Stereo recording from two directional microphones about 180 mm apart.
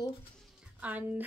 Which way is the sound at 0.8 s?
10° right (ahead or behind).